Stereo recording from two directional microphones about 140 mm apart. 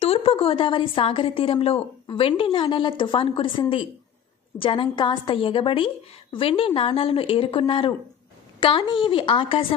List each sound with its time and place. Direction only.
0.0 s a woman's voice: 40° left (ahead or behind)